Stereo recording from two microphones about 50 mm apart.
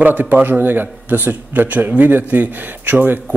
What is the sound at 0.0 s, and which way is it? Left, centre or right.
A man's voice, right.